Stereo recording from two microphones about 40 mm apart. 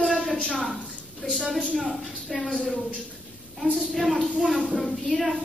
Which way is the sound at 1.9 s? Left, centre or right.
Centre.